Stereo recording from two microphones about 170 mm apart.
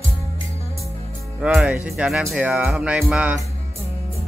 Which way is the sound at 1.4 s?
5° right (ahead or behind).